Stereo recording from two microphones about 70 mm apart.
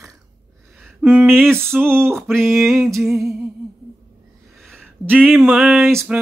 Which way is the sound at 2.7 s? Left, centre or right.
Right.